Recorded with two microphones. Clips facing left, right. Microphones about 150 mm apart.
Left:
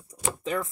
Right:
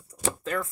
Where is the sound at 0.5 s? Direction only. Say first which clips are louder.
Left 2 dB; 10° left (ahead or behind).